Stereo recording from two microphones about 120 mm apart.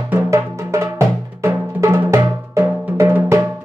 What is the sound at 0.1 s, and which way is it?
Music, 25° right (ahead or behind).